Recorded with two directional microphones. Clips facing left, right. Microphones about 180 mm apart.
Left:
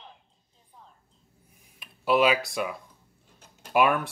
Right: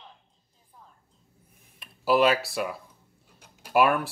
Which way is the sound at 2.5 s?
Centre (ahead or behind).